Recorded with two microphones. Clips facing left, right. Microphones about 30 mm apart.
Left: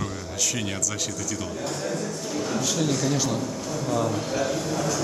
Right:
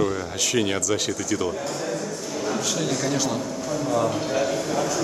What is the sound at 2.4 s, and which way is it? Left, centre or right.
A man's voice, centre.